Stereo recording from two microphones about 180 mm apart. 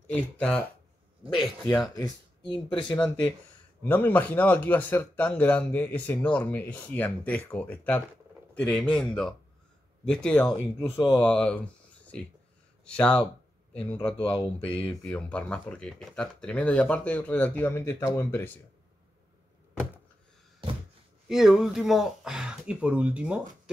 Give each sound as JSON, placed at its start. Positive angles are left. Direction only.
{"t": 0.0, "sound": "speech", "side_deg": 10}
{"t": 1.2, "sound": "speech", "side_deg": -30}
{"t": 2.7, "sound": "speech", "side_deg": 25}
{"t": 3.8, "sound": "speech", "side_deg": 10}
{"t": 14.1, "sound": "speech", "side_deg": 30}
{"t": 15.0, "sound": "speech", "side_deg": 5}
{"t": 21.3, "sound": "speech", "side_deg": 0}